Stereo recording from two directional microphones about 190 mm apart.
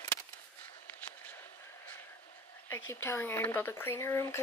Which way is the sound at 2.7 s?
15° left (ahead or behind).